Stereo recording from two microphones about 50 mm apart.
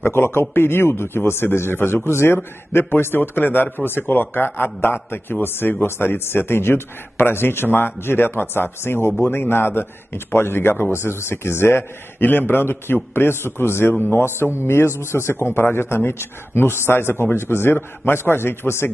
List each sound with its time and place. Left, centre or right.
0.0 s speech: left